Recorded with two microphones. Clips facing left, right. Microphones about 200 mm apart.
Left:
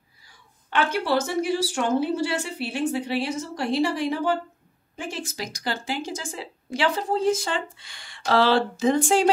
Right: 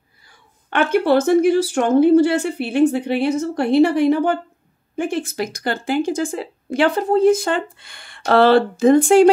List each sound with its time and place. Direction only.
0.7 s a woman's voice: 55° right (ahead or behind)